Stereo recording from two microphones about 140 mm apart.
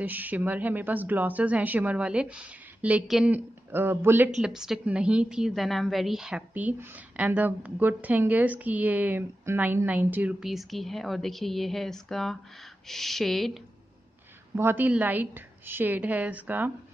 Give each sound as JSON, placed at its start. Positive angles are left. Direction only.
{"t": 0.0, "sound": "speech", "side_deg": -10}
{"t": 4.4, "sound": "a woman's voice", "side_deg": -5}
{"t": 14.5, "sound": "speech", "side_deg": -15}